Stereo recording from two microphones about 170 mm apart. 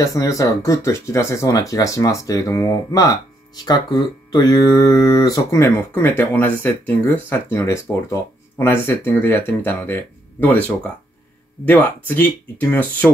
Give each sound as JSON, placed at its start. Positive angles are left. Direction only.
{"t": 0.0, "sound": "speech", "side_deg": 20}